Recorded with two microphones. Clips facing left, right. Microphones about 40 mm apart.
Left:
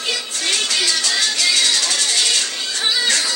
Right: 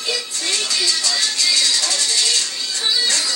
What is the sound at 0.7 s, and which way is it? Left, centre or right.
Music, left.